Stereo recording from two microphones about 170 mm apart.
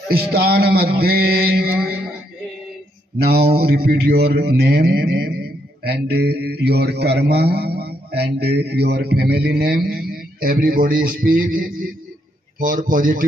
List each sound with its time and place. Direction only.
0.3 s mantra: 65° right (ahead or behind)
3.2 s speech: 65° right (ahead or behind)